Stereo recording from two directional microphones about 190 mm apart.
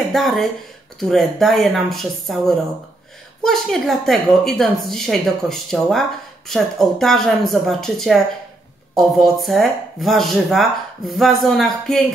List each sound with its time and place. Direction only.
0.1 s speech: centre (ahead or behind)